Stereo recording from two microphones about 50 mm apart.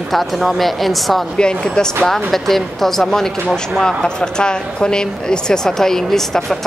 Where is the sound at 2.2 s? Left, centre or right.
Centre.